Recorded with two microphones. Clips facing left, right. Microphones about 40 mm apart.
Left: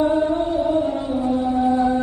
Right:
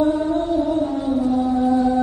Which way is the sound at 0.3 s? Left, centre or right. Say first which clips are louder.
Even; centre.